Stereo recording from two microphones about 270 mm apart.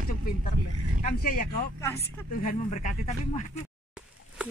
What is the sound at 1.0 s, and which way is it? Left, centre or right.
Speech, left.